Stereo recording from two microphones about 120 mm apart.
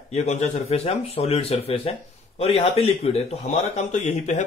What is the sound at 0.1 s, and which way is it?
Speech, 70° left (ahead or behind).